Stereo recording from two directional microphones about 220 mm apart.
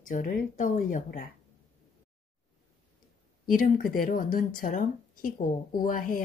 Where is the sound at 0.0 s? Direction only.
35° left (ahead or behind).